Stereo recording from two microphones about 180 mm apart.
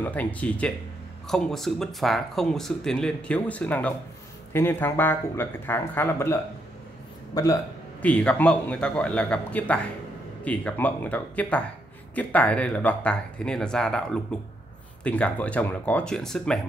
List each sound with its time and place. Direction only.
0.0 s speech: 10° left (ahead or behind)
8.0 s speech: 5° left (ahead or behind)